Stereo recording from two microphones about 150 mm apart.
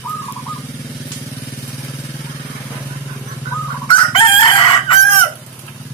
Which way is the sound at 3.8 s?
35° left (ahead or behind).